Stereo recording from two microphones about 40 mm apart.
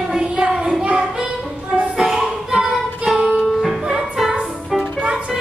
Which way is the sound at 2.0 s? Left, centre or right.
Centre.